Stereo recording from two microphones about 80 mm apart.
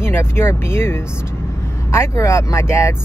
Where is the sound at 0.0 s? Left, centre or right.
Left.